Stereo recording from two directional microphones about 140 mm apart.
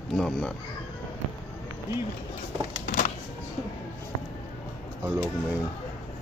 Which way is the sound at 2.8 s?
75° left (ahead or behind).